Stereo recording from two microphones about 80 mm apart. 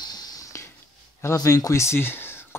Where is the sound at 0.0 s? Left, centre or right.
Left.